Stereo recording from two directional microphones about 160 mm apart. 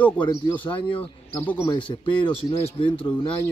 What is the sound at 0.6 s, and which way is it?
Speech, 30° left (ahead or behind).